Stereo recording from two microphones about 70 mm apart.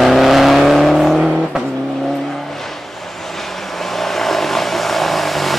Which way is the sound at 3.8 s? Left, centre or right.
Centre.